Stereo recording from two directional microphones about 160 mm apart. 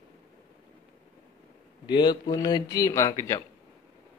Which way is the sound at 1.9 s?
25° left (ahead or behind).